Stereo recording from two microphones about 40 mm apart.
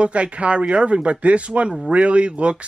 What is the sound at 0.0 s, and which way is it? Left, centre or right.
Speech, right.